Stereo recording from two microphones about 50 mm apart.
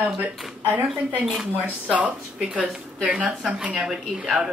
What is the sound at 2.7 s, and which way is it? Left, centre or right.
Speech, right.